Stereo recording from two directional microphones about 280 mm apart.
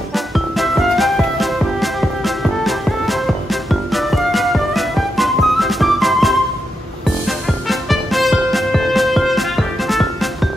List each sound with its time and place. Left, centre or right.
0.1 s music: centre